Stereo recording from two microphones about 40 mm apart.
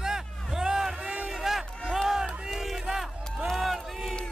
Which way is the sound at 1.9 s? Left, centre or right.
Centre.